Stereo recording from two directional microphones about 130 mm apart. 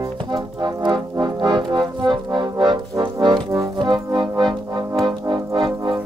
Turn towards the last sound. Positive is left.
turn(degrees=-35)  # may be behind; listen again after turning